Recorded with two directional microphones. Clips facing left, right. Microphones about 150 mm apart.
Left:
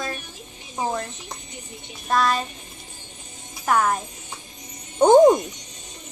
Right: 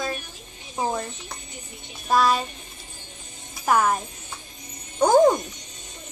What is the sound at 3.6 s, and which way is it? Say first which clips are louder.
Child singing: even; 5° right (ahead or behind).